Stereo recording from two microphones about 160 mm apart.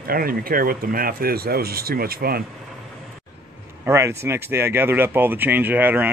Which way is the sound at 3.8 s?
15° right (ahead or behind).